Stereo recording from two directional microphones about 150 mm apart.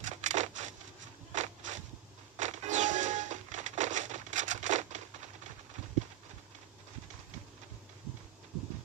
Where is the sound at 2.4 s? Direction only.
55° right (ahead or behind).